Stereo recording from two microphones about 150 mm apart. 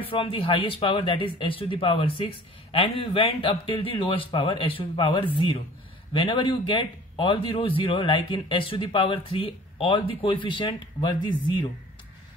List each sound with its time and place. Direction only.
0.0 s speech: 35° left (ahead or behind)